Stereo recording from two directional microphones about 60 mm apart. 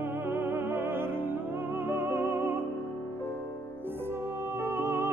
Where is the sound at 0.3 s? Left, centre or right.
Right.